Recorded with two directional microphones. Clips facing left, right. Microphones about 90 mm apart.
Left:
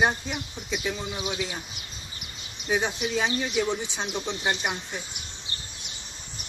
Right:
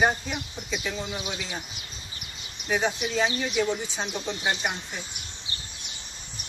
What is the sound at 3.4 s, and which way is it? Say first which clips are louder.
Speech: even; 15° left (ahead or behind).